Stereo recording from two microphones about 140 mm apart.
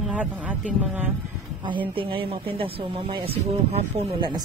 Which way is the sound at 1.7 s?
40° right (ahead or behind).